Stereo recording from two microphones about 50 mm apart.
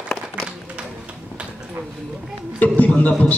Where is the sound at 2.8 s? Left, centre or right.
Centre.